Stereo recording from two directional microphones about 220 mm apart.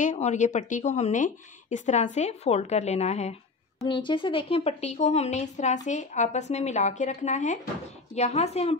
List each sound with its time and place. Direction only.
0.0 s speech: 35° left (ahead or behind)